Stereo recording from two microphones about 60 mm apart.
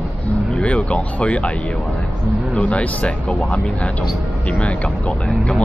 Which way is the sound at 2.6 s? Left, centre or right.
Left.